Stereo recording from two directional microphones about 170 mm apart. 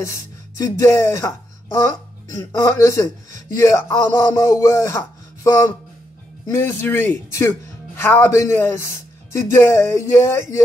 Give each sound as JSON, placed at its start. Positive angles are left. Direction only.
{"t": 0.0, "sound": "speech", "side_deg": 15}